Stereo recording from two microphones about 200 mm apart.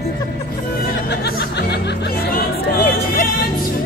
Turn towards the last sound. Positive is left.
turn(degrees=40)  # may be behind; listen again after turning